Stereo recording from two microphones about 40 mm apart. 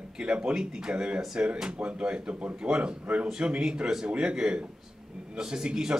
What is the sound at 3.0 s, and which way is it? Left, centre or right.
Speech, right.